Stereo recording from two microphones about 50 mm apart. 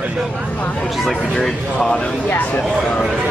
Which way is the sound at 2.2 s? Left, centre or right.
Left.